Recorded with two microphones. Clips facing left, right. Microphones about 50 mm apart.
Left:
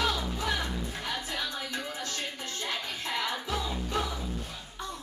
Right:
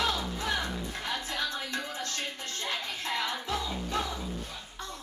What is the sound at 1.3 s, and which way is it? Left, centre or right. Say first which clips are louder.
Music: right 1 dB; centre.